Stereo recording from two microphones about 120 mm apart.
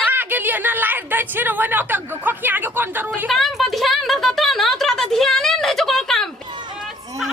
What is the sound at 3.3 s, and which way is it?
Speech, centre (ahead or behind).